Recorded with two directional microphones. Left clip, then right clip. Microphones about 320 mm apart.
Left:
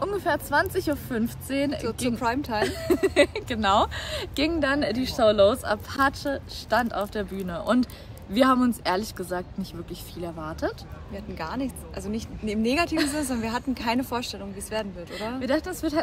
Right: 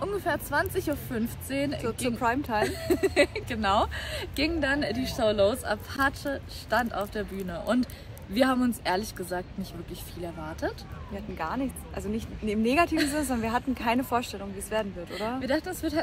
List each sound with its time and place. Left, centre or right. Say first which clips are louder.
0.0 s speech: left 3 dB; centre
1.9 s a woman's voice: left 1 dB; centre
2.9 s speech: left 4 dB; centre
11.3 s a woman's voice: even; centre
15.4 s speech: left 5 dB; centre